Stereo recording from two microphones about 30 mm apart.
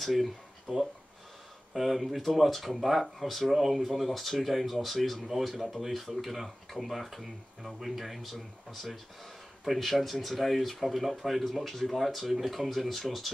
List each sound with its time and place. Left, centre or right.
0.0 s speech: centre